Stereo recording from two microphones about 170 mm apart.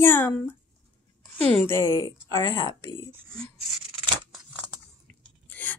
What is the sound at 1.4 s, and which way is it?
A woman's voice, 10° left (ahead or behind).